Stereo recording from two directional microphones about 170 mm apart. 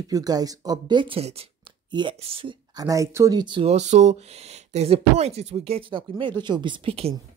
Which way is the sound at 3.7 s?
40° right (ahead or behind).